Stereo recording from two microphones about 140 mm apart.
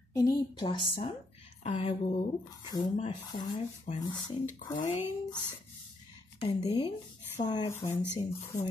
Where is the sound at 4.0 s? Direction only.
30° left (ahead or behind).